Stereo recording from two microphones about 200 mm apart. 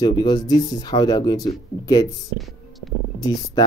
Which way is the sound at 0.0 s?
20° left (ahead or behind).